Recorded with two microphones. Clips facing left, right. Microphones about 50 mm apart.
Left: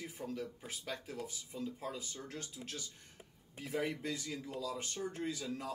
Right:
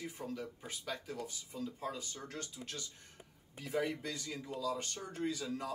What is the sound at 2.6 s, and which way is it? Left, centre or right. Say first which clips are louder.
Speech: even; right.